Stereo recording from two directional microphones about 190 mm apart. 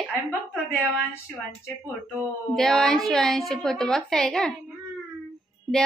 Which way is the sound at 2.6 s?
Centre (ahead or behind).